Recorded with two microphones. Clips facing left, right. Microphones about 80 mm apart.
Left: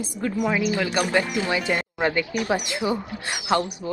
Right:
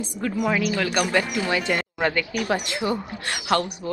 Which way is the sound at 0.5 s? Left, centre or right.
Left.